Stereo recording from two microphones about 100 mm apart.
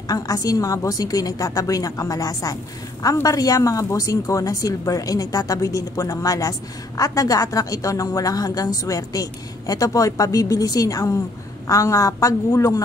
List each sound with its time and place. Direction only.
0.1 s a woman's voice: 35° left (ahead or behind)